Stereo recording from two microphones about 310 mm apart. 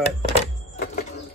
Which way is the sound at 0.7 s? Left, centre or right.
Left.